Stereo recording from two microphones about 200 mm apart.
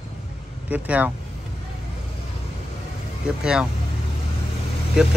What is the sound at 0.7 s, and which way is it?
Speech, 5° right (ahead or behind).